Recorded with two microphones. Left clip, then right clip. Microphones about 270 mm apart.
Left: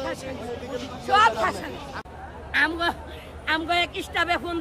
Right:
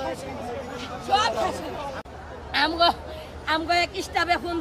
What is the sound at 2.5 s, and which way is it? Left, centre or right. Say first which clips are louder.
A man's voice: right 2 dB; centre.